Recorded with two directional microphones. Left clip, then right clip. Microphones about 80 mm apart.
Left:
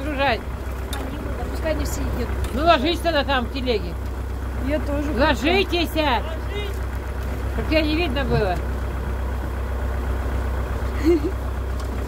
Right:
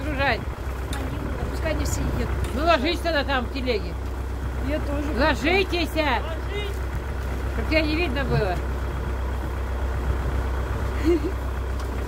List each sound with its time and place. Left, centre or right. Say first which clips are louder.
0.1 s boat: left 2 dB; left
1.6 s speech: left 3 dB; centre
2.5 s speech: left 3 dB; left
5.1 s speech: left 2 dB; left
7.7 s speech: left 2 dB; left